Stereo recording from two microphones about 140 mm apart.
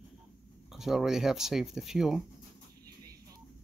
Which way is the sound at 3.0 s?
25° right (ahead or behind).